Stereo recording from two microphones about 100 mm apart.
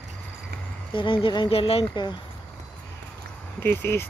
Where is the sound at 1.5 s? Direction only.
75° left (ahead or behind).